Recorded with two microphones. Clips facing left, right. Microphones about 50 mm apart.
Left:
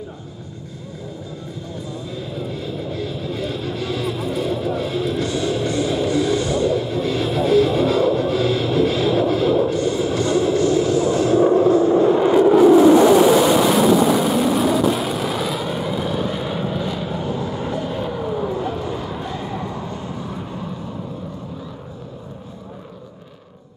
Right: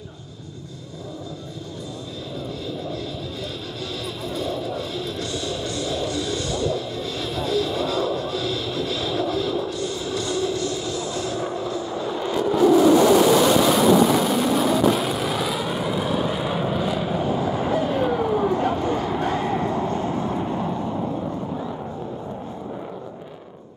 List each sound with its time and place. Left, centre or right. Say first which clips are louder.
2.6 s vehicle: left 3 dB; left
3.9 s music: left 6 dB; left
11.4 s vehicle: left 13 dB; left
13.7 s vehicle: left 2 dB; centre
20.3 s vehicle: right 5 dB; centre